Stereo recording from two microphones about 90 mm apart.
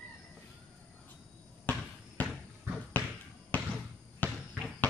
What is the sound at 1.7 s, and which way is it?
Basketball bounce, 15° left (ahead or behind).